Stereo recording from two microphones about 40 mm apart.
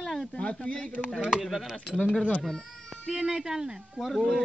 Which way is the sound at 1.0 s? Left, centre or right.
Centre.